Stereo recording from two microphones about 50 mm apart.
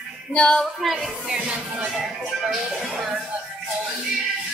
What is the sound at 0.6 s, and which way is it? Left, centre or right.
Speech, centre.